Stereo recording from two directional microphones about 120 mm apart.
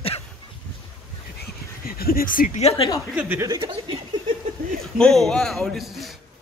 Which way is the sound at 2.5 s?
55° left (ahead or behind).